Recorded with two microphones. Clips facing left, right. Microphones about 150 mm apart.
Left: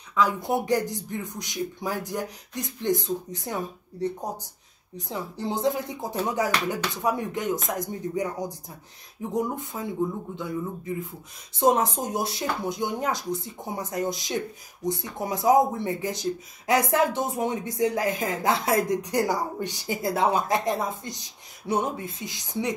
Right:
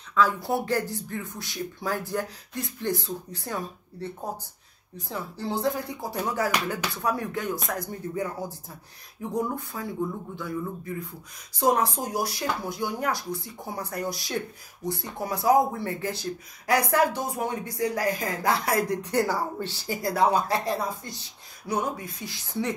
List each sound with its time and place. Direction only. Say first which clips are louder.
0.1 s speech: even; 15° left (ahead or behind)